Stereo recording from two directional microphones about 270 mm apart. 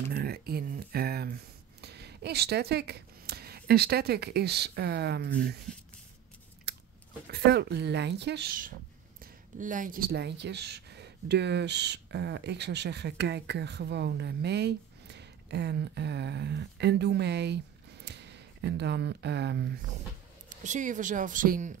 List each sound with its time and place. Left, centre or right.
0.1 s a sound: right
6.7 s chewing: right
7.2 s speech: right
20.4 s speech: right